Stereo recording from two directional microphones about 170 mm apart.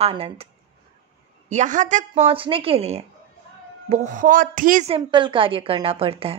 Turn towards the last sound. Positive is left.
turn(degrees=-35)  # may be behind; listen again after turning